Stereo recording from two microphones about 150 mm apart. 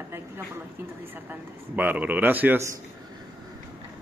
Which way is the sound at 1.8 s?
10° right (ahead or behind).